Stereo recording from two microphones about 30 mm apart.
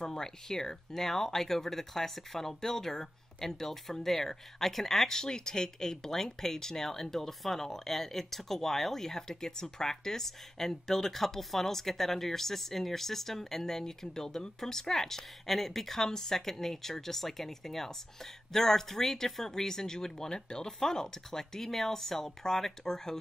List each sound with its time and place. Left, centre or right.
0.0 s speech: centre